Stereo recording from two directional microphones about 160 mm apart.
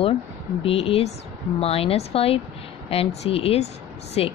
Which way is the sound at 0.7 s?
35° left (ahead or behind).